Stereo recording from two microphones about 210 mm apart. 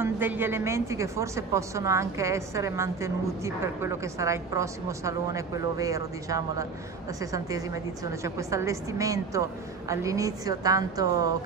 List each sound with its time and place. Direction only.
0.0 s a woman's voice: 10° right (ahead or behind)